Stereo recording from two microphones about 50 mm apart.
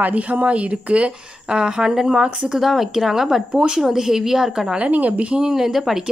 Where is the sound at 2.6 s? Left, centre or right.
Centre.